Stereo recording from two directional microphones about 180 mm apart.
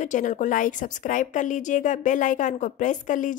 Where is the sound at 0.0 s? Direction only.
45° left (ahead or behind).